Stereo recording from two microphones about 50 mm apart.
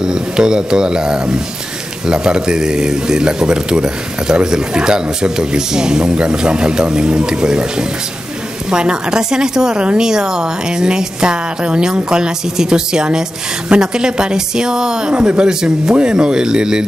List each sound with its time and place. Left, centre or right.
0.0 s speech: centre